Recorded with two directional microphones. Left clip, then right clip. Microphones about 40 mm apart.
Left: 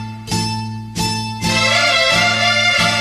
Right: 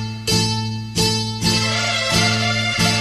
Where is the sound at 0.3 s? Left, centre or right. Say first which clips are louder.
Right 2 dB; left.